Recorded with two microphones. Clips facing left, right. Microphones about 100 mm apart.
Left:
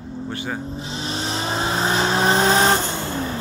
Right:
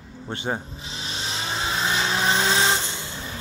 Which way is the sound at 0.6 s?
35° left (ahead or behind).